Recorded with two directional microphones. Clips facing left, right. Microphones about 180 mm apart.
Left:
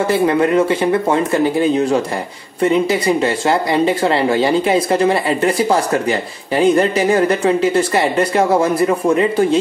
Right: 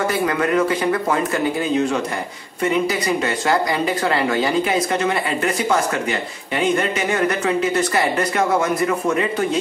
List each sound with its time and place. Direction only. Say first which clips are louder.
0.0 s speech: left 6 dB; 25° left (ahead or behind)